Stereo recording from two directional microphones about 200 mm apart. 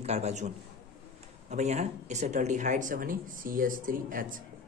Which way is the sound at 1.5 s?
35° right (ahead or behind).